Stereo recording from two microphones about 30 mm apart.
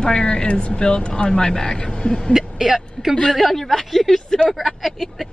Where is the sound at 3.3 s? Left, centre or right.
Centre.